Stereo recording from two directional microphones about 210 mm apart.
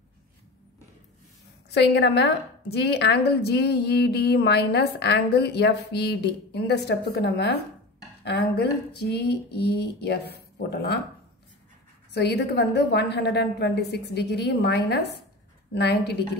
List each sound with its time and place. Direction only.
1.7 s a woman's voice: 55° left (ahead or behind)
12.1 s a woman's voice: 55° left (ahead or behind)